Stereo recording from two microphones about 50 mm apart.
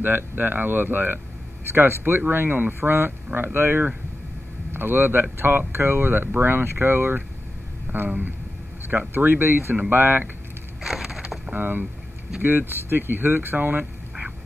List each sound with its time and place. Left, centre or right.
0.0 s speech: right
1.7 s speech: right
9.1 s speech: right
10.8 s wood: centre
11.5 s speech: right